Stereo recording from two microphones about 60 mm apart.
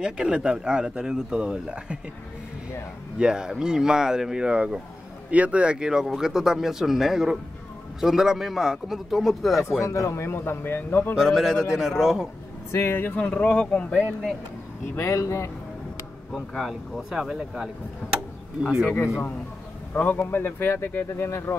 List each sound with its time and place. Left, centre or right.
0.0 s speech: centre
3.2 s a man's voice: centre
9.8 s speech: left
11.1 s a man's voice: centre
12.7 s speech: left
13.3 s speech: centre
15.0 s a man's voice: left
16.3 s a man's voice: centre
17.1 s speech: centre
19.9 s speech: left